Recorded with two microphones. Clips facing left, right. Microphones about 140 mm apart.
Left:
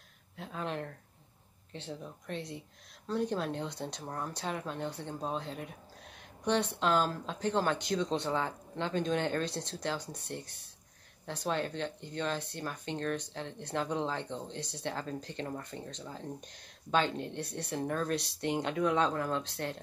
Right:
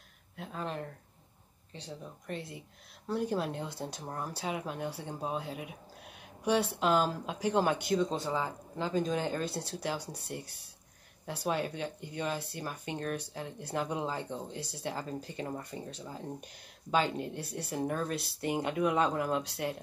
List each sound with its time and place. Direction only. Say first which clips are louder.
0.4 s speech: left 1 dB; centre (ahead or behind)